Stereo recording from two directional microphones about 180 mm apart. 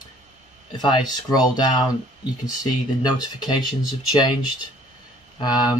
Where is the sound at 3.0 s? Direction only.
25° left (ahead or behind).